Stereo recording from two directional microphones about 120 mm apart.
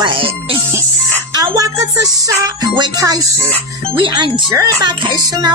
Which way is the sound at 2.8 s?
30° right (ahead or behind).